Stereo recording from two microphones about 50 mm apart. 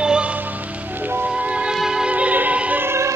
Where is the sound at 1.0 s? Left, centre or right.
Right.